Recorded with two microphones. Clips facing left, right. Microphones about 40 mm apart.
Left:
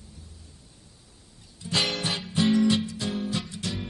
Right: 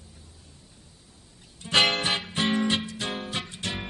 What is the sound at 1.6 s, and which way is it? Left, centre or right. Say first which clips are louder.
Music: right 5 dB; right.